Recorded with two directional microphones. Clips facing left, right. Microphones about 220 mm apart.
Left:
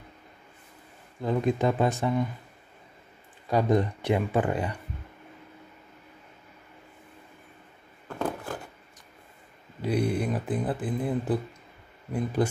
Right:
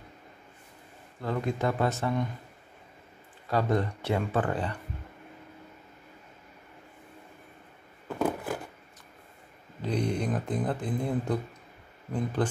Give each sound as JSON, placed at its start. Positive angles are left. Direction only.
{"t": 1.2, "sound": "speech", "side_deg": 15}
{"t": 3.4, "sound": "speech", "side_deg": 15}
{"t": 8.2, "sound": "a sound", "side_deg": -5}
{"t": 9.8, "sound": "speech", "side_deg": 10}
{"t": 12.4, "sound": "speech", "side_deg": 10}